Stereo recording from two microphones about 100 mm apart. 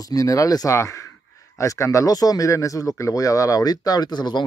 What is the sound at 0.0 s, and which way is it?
Speech, 35° left (ahead or behind).